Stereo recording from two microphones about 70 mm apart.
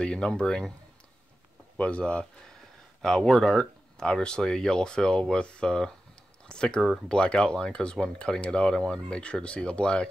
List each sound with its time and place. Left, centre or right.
0.0 s speech: centre
1.8 s speech: centre